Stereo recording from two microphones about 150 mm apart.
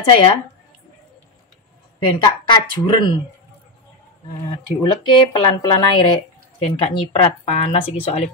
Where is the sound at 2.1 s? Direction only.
30° left (ahead or behind).